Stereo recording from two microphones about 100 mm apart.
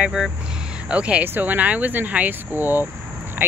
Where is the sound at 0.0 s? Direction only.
5° right (ahead or behind).